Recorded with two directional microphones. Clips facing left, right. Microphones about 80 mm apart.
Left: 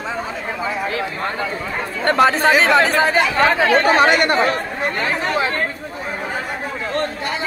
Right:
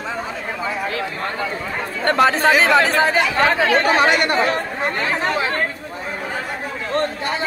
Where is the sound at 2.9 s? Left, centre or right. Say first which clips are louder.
Even; centre.